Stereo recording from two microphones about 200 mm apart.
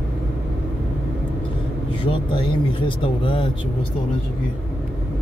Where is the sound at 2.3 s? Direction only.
25° left (ahead or behind).